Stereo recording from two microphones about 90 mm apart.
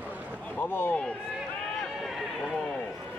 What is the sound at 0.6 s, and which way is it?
Speech, 25° left (ahead or behind).